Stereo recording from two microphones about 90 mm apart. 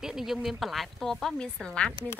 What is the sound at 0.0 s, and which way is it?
Speech, 5° right (ahead or behind).